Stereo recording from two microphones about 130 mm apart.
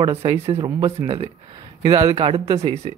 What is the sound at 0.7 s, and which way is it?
A man's voice, 25° right (ahead or behind).